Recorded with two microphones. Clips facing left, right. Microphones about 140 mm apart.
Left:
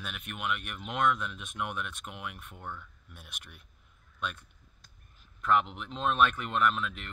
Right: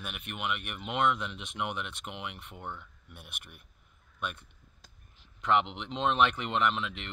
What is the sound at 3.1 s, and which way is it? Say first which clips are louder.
Speech: right 1 dB; 55° right (ahead or behind).